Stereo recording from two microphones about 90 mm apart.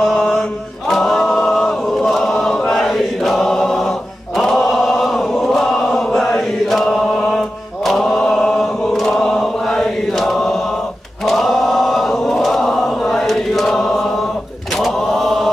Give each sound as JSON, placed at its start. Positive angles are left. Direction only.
{"t": 0.0, "sound": "chant", "side_deg": 5}
{"t": 4.4, "sound": "choir", "side_deg": 5}
{"t": 11.2, "sound": "chant", "side_deg": 0}